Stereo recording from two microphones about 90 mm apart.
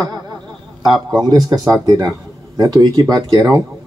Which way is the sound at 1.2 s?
45° right (ahead or behind).